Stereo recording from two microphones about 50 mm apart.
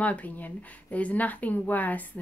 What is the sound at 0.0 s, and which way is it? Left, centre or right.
Speech, left.